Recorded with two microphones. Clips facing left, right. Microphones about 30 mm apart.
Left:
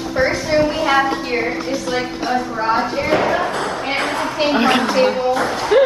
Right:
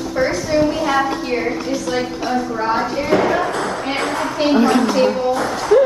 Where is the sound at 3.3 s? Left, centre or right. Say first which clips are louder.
Even; centre.